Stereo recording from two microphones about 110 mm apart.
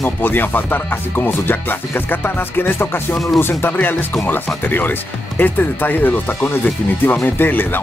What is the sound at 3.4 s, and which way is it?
Speech, 20° left (ahead or behind).